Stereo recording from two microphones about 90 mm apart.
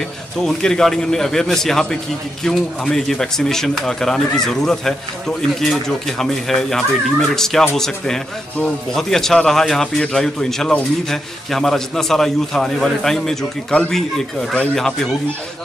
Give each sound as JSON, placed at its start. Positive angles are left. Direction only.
{"t": 0.5, "sound": "a man's voice", "side_deg": 5}
{"t": 5.6, "sound": "a man's voice", "side_deg": 5}